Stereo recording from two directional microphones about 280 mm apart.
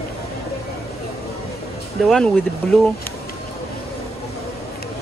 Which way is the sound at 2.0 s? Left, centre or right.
Centre.